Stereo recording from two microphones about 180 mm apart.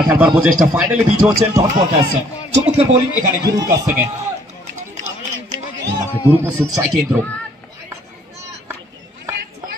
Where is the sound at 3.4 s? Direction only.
20° right (ahead or behind).